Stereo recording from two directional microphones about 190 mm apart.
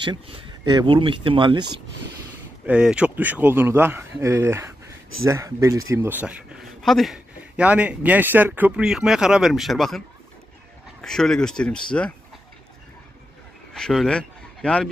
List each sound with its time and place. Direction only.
0.0 s speech: 25° right (ahead or behind)
2.6 s a man's voice: 5° right (ahead or behind)
13.7 s speech: 5° left (ahead or behind)